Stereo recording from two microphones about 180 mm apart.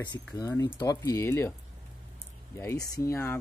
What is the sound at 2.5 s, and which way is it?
Speech, 15° left (ahead or behind).